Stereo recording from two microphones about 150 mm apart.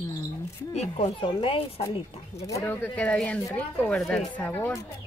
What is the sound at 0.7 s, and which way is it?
Speech, 45° left (ahead or behind).